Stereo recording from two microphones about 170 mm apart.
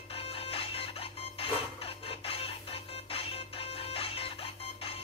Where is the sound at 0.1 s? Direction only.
35° left (ahead or behind).